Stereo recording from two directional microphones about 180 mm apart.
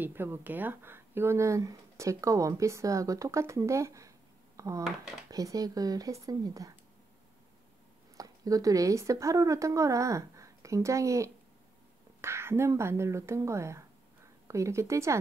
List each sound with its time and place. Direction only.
0.0 s speech: 10° right (ahead or behind)
4.8 s speech: centre (ahead or behind)
5.3 s speech: 20° right (ahead or behind)
8.2 s speech: 20° right (ahead or behind)